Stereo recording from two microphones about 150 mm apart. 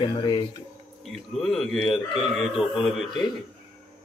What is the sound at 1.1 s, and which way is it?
Speech, centre (ahead or behind).